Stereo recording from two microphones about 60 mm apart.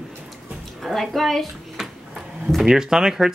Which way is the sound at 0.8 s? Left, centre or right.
Centre.